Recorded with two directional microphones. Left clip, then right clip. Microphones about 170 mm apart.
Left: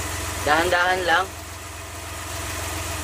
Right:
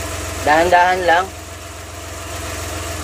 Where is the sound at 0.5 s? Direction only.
20° right (ahead or behind).